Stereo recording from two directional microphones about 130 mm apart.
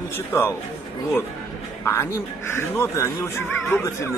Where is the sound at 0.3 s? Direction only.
20° left (ahead or behind).